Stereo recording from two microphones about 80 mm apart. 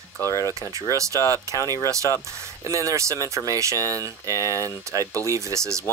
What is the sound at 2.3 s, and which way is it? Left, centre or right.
Speech, right.